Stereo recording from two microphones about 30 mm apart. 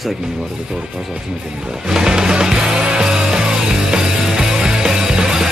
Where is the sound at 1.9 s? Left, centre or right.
Right.